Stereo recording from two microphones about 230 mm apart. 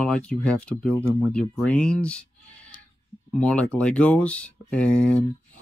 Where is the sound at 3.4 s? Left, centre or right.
Centre.